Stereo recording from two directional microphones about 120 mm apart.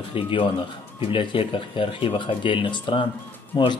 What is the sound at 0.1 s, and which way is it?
Speech, 50° left (ahead or behind).